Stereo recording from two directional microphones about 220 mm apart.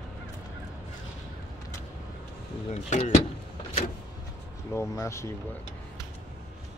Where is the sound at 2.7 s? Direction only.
30° left (ahead or behind).